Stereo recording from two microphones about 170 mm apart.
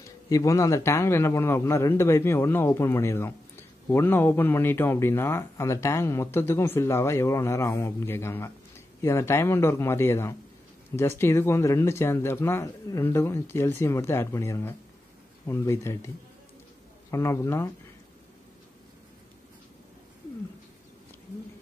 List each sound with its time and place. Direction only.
0.3 s a man's voice: 20° left (ahead or behind)
17.1 s a man's voice: 15° left (ahead or behind)